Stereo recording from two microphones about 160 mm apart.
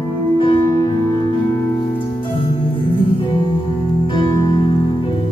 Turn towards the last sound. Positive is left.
turn(degrees=30)  # may be behind; listen again after turning